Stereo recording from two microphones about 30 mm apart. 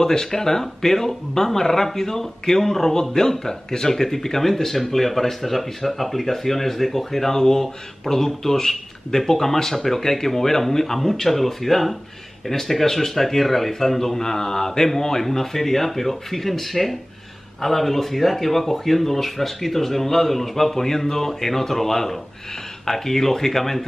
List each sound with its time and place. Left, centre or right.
0.0 s speech: centre
7.3 s speech: centre